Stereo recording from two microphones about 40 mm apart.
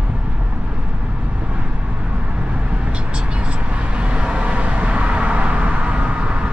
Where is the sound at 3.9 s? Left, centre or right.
Right.